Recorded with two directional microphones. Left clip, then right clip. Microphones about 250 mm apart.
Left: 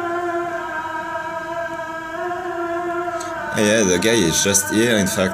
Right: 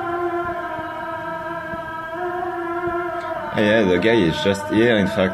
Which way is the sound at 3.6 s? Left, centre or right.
Centre.